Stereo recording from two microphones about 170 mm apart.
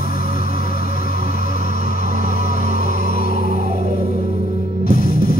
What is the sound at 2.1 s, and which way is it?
Vehicle, 45° right (ahead or behind).